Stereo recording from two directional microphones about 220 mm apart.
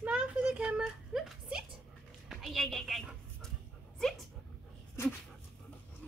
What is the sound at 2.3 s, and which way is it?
Dog, centre (ahead or behind).